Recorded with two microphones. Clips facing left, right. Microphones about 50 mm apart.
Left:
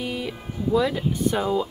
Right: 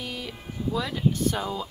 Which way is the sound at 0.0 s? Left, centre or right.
Centre.